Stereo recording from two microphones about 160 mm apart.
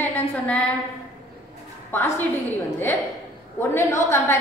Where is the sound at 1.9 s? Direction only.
15° left (ahead or behind).